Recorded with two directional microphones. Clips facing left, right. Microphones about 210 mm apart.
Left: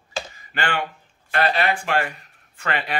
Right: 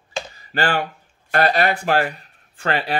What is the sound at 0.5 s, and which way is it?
Speech, 35° right (ahead or behind).